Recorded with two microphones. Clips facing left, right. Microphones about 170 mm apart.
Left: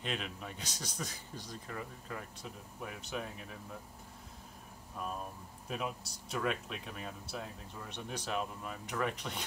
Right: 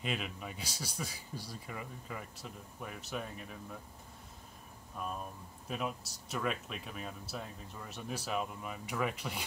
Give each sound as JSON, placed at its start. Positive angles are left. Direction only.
{"t": 0.0, "sound": "speech", "side_deg": -5}
{"t": 5.7, "sound": "speech", "side_deg": 0}